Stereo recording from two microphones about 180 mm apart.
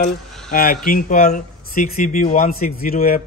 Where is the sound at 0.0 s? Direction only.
50° left (ahead or behind).